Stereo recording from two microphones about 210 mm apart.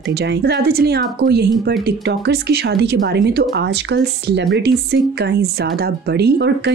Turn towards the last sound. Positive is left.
turn(degrees=-55)  # may be behind; listen again after turning